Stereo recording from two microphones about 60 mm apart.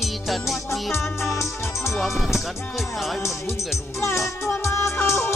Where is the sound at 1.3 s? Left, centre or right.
Left.